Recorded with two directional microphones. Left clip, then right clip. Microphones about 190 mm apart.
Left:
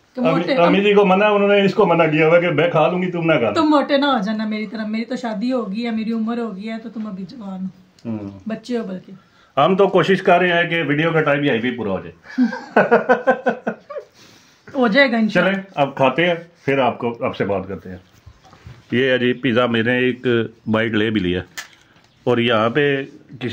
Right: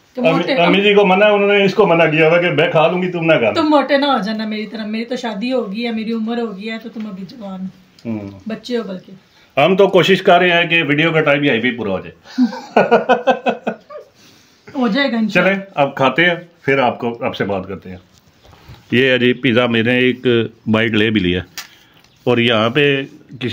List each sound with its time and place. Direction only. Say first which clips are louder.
0.2 s a woman's voice: right 4 dB; centre (ahead or behind)
0.7 s a man's voice: right 3 dB; 10° right (ahead or behind)
3.5 s a woman's voice: right 2 dB; centre (ahead or behind)
8.5 s speech: right 3 dB; 10° left (ahead or behind)
9.6 s a woman's voice: right 3 dB; 15° right (ahead or behind); by 12.0 s centre (ahead or behind)
12.3 s speech: right 2 dB; 10° left (ahead or behind)
14.8 s speech: left 2 dB; 40° left (ahead or behind)
15.3 s a woman's voice: right 3 dB; 5° left (ahead or behind)
18.9 s a man's voice: right 4 dB; 10° right (ahead or behind)